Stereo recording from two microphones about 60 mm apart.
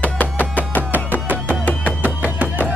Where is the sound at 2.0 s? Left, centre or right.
Right.